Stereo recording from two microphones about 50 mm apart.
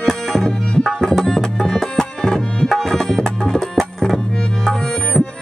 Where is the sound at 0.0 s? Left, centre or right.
Centre.